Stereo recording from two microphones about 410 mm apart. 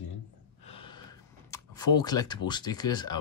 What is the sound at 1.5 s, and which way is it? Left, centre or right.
Speech, centre.